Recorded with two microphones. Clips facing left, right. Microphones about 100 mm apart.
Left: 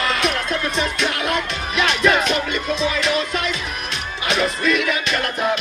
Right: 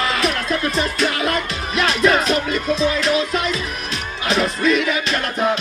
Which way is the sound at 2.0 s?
35° right (ahead or behind).